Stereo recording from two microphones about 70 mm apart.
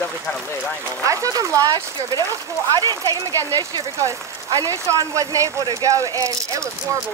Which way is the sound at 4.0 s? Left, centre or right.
Right.